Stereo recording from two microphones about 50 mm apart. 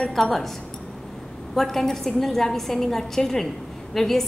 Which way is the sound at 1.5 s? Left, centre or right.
Centre.